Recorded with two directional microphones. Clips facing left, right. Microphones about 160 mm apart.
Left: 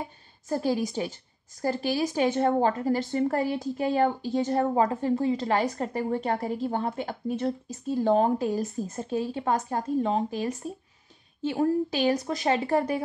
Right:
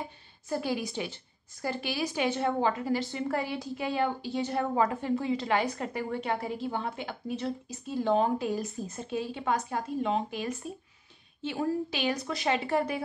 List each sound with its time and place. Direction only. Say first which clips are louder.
0.5 s a woman's voice: left 5 dB; 40° left (ahead or behind)